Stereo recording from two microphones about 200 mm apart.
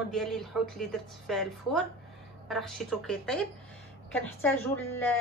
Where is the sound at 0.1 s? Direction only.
Centre (ahead or behind).